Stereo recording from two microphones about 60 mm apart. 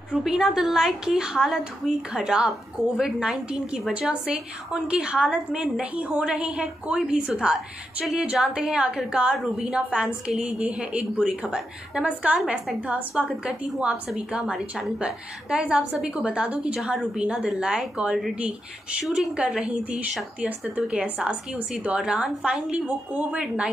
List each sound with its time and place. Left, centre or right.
0.1 s a woman's voice: centre
21.9 s a woman's voice: centre